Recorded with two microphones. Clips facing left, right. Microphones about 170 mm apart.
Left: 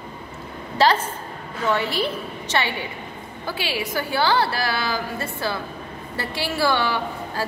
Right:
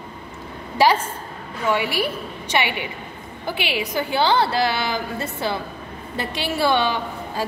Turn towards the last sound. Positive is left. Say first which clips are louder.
# even
turn(degrees=-20)  # may be behind; listen again after turning